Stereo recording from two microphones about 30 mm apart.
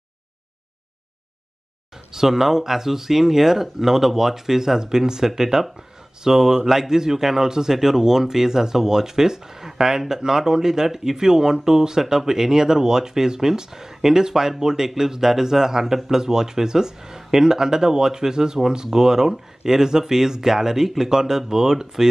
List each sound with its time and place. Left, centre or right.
2.1 s a man's voice: centre